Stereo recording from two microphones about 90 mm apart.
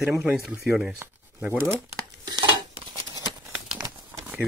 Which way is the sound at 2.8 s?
50° right (ahead or behind).